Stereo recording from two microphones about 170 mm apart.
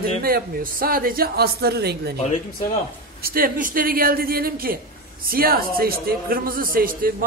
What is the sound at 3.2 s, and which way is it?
A man's voice, 60° right (ahead or behind).